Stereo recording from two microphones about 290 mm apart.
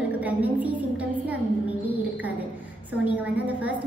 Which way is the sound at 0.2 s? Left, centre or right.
Centre.